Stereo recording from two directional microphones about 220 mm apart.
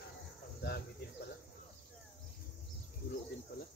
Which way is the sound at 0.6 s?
45° left (ahead or behind).